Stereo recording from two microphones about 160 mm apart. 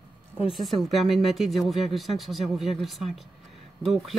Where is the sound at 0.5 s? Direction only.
Centre (ahead or behind).